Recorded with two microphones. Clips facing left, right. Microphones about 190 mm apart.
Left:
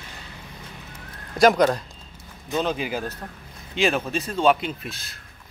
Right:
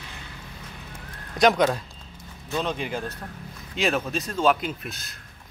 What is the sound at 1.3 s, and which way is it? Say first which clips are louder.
Speech: left 3 dB; centre (ahead or behind).